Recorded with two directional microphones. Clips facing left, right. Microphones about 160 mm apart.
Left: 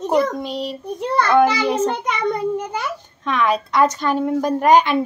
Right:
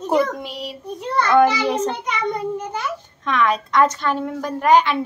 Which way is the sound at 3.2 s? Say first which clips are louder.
Left 1 dB; 5° left (ahead or behind).